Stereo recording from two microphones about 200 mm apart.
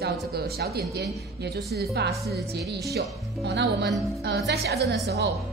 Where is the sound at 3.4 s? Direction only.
60° right (ahead or behind).